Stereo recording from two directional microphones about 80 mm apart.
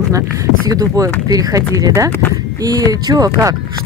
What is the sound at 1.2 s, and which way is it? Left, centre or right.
Speech, right.